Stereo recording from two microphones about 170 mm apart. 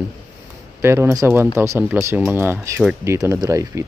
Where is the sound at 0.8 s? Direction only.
15° right (ahead or behind).